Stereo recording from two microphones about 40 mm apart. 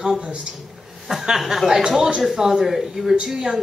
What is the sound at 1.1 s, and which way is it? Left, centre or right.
A woman's voice, centre.